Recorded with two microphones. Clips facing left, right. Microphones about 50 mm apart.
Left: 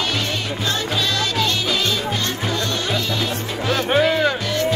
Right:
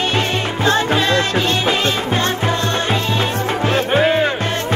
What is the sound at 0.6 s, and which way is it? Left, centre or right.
Music, right.